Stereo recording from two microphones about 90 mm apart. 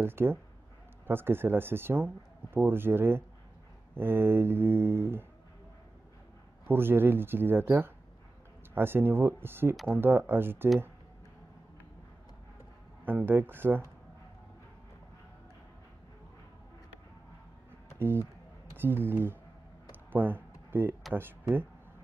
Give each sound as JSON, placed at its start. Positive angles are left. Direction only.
{"t": 0.0, "sound": "speech", "side_deg": -25}
{"t": 6.7, "sound": "speech", "side_deg": -25}
{"t": 13.0, "sound": "speech", "side_deg": -20}
{"t": 17.9, "sound": "speech", "side_deg": -25}
{"t": 19.9, "sound": "a sound", "side_deg": -20}
{"t": 21.1, "sound": "speech", "side_deg": -20}